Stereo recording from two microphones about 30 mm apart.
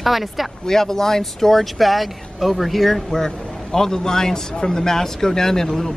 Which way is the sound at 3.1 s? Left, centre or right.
Centre.